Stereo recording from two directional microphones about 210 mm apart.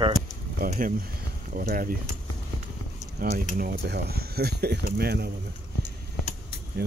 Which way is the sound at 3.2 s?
40° right (ahead or behind).